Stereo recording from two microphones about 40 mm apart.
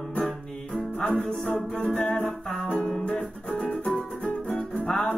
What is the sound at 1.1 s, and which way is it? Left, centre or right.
Music, left.